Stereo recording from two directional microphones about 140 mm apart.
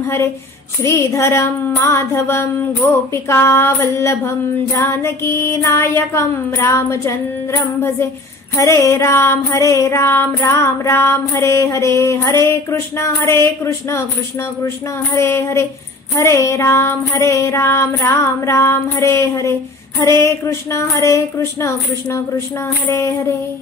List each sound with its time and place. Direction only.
0.8 s music: 20° left (ahead or behind)
8.8 s music: 20° left (ahead or behind)
15.1 s music: 20° left (ahead or behind)